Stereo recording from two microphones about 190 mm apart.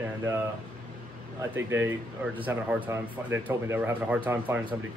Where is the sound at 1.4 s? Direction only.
15° right (ahead or behind).